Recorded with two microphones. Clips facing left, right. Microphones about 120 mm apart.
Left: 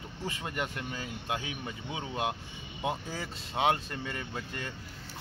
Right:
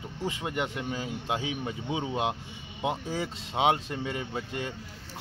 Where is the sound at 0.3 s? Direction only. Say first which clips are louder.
Right 3 dB; 15° right (ahead or behind).